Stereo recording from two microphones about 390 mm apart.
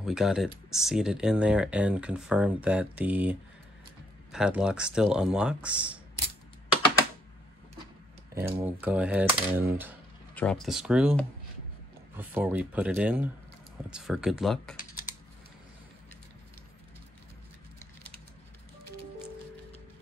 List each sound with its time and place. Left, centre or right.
0.0 s speech: centre
8.4 s speech: centre